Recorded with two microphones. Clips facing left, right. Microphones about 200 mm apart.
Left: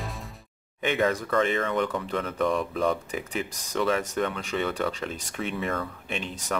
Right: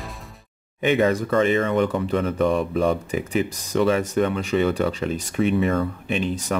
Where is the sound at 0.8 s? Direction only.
5° right (ahead or behind).